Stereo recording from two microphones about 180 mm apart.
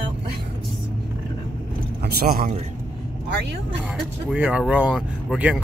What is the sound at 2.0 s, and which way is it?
Speech, 55° right (ahead or behind).